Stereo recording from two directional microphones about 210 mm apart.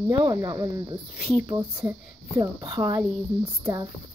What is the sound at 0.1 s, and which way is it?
Speech, 15° right (ahead or behind).